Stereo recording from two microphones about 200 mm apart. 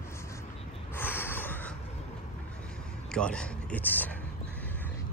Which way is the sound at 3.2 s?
5° left (ahead or behind).